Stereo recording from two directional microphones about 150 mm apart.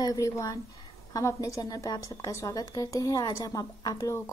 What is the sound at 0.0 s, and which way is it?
A woman's voice, 20° left (ahead or behind).